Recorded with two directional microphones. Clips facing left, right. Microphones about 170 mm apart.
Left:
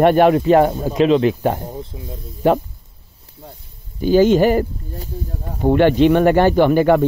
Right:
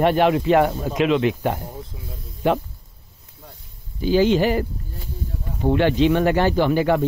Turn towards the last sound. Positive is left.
turn(degrees=55)  # may be behind; listen again after turning